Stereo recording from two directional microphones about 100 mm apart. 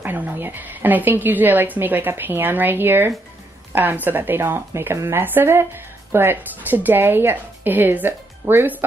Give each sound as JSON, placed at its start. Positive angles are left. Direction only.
{"t": 0.0, "sound": "speech", "side_deg": -20}